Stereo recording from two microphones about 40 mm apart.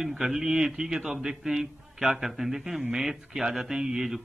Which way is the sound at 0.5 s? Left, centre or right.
Right.